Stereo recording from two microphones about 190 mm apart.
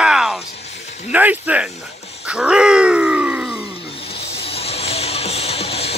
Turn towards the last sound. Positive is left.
turn(degrees=30)  # may be behind; listen again after turning